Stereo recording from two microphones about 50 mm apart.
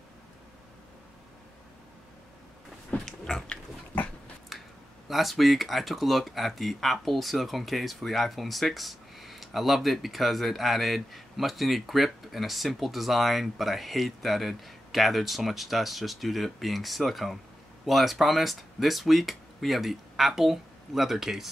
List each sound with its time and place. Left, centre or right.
2.9 s pig: left
4.5 s speech: centre